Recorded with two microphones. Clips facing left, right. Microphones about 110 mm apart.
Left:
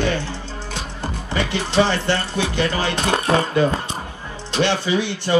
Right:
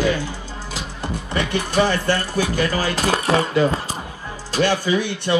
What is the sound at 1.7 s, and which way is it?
Speech, 20° left (ahead or behind).